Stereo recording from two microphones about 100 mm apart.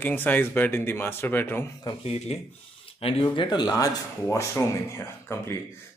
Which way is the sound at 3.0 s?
75° left (ahead or behind).